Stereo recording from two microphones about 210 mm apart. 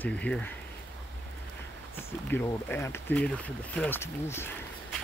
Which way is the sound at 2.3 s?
10° left (ahead or behind).